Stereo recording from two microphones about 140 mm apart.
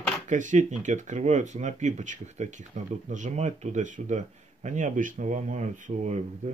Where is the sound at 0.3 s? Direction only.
60° right (ahead or behind).